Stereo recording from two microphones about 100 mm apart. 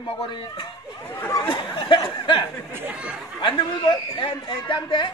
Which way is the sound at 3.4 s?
50° left (ahead or behind).